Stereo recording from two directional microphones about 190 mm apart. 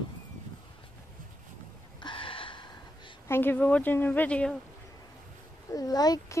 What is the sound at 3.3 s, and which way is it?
Speech, 10° left (ahead or behind).